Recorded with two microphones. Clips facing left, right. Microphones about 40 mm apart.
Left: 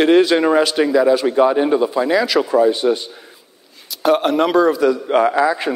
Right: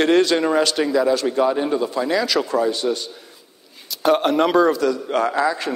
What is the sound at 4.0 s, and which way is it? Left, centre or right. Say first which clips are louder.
Speech: left 2 dB; centre.